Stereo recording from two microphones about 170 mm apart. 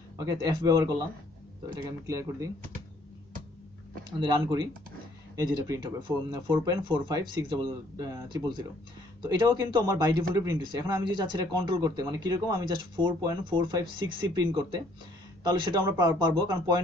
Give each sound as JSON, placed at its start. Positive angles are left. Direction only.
{"t": 0.2, "sound": "speech", "side_deg": -20}
{"t": 2.0, "sound": "speech", "side_deg": -20}
{"t": 4.2, "sound": "speech", "side_deg": -25}